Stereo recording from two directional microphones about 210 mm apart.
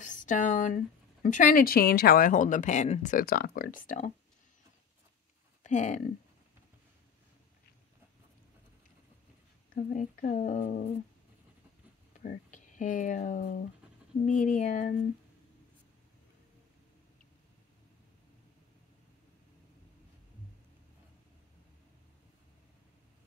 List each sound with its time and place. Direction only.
0.0 s speech: 35° left (ahead or behind)
5.6 s speech: 35° left (ahead or behind)
9.8 s speech: 40° left (ahead or behind)
12.1 s speech: 35° left (ahead or behind)